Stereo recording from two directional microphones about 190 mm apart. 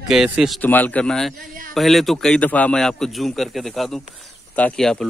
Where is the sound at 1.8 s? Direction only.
Centre (ahead or behind).